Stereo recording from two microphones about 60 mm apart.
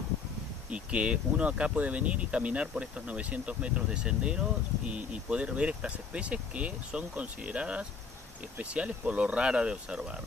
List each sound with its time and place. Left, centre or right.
0.7 s speech: right